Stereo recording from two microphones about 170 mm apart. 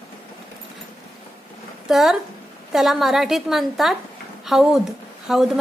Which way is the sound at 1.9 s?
Centre (ahead or behind).